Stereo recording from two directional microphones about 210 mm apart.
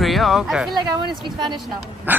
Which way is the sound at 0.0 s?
Centre (ahead or behind).